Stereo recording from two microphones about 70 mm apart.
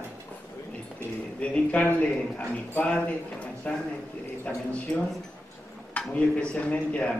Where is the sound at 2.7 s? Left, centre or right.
Centre.